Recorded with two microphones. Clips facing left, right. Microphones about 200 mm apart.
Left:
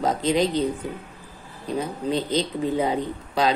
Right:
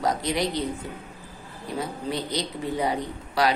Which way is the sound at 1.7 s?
20° left (ahead or behind).